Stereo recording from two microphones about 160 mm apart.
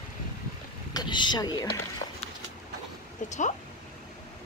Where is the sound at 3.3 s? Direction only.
50° left (ahead or behind).